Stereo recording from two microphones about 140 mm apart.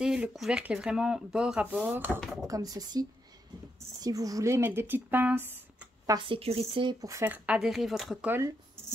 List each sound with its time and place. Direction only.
0.0 s speech: 5° right (ahead or behind)
2.1 s speech: centre (ahead or behind)
2.4 s speech: 25° right (ahead or behind)
6.1 s speech: 40° right (ahead or behind)
7.0 s speech: 25° right (ahead or behind)
7.2 s speech: 10° right (ahead or behind)